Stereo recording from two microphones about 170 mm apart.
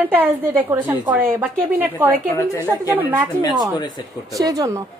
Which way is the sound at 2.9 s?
10° right (ahead or behind).